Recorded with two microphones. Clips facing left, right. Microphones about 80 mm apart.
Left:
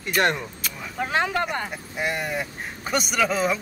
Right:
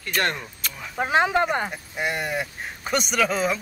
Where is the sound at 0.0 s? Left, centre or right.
Centre.